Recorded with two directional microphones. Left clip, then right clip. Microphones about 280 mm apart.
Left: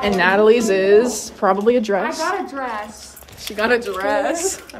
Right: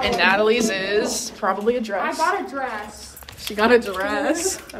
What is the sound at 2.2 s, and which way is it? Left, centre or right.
Speech, centre.